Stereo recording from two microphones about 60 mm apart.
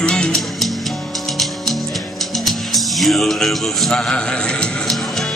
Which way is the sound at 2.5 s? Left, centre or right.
Centre.